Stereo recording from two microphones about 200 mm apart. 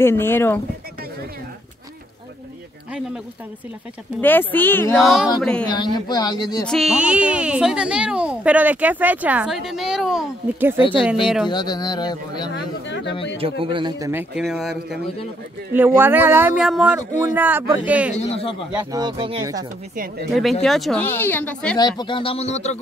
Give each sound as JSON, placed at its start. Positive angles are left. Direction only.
{"t": 0.0, "sound": "speech", "side_deg": 10}
{"t": 4.2, "sound": "speech", "side_deg": 10}
{"t": 4.9, "sound": "a woman's voice", "side_deg": 0}
{"t": 5.7, "sound": "speech", "side_deg": 20}
{"t": 6.6, "sound": "a woman's voice", "side_deg": 0}
{"t": 10.8, "sound": "speech", "side_deg": 25}
{"t": 12.8, "sound": "speech", "side_deg": 60}
{"t": 13.4, "sound": "a man's voice", "side_deg": -25}
{"t": 14.3, "sound": "a woman's voice", "side_deg": 0}
{"t": 18.1, "sound": "speech", "side_deg": 30}
{"t": 18.9, "sound": "a man's voice", "side_deg": -20}
{"t": 20.2, "sound": "a woman's voice", "side_deg": 0}
{"t": 21.7, "sound": "speech", "side_deg": 20}